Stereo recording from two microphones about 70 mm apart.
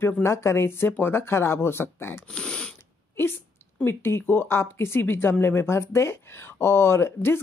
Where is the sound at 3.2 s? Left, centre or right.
Left.